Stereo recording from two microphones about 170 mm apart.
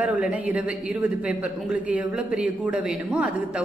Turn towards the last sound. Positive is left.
turn(degrees=-5)  # may be behind; listen again after turning